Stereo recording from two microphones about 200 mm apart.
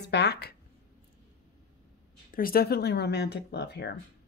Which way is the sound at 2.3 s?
45° left (ahead or behind).